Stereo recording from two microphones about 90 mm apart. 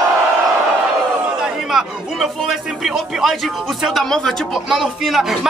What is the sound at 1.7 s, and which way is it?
Speech, 5° right (ahead or behind).